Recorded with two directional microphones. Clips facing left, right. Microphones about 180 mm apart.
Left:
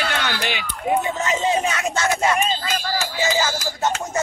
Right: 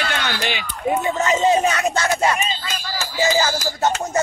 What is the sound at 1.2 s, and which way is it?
Speech, 40° right (ahead or behind).